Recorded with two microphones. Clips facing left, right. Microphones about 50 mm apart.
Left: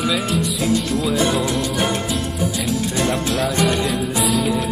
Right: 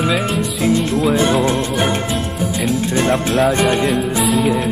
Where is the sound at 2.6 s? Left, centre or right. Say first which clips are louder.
Right 6 dB; right.